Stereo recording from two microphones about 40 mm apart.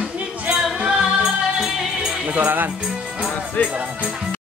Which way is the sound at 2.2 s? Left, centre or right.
Right.